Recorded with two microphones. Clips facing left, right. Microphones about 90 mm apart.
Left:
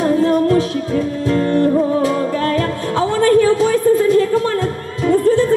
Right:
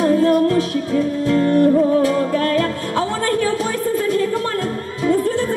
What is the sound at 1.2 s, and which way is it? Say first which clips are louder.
Music: right 1 dB; 25° left (ahead or behind).